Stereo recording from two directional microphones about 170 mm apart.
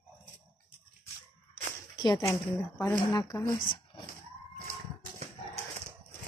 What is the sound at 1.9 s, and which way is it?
Speech, 25° left (ahead or behind).